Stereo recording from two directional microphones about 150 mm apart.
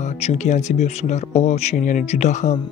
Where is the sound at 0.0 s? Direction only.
50° left (ahead or behind).